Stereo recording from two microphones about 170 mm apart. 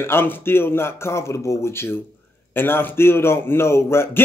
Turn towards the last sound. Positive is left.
turn(degrees=15)  # may be behind; listen again after turning